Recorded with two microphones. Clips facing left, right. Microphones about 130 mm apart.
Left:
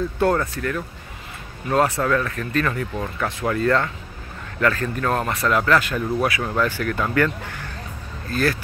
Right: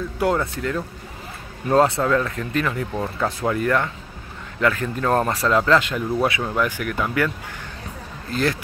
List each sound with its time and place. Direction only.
0.2 s speech: 15° right (ahead or behind)
5.1 s speech: 30° right (ahead or behind); by 7.2 s 10° right (ahead or behind)
8.3 s speech: 20° right (ahead or behind)